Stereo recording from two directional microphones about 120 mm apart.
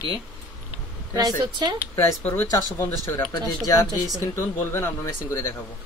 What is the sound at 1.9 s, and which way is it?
Speech, 15° left (ahead or behind).